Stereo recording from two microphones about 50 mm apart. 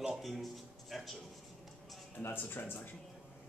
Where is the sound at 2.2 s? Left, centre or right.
Left.